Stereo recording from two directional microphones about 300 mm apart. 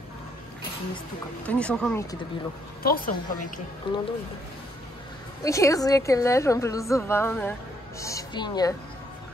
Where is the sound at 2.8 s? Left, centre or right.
Left.